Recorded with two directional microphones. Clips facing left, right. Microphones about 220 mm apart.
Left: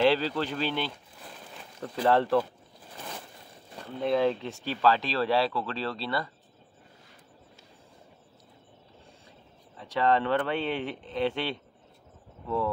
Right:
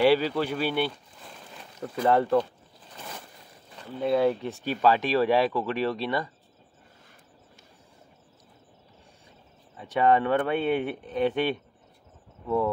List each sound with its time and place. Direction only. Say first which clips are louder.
0.0 s speech: right 3 dB; 10° right (ahead or behind)
4.0 s speech: right 2 dB; 5° right (ahead or behind)
9.8 s speech: right 3 dB; 15° right (ahead or behind)